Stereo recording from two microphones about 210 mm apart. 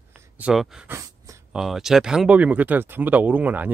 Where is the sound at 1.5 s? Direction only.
Centre (ahead or behind).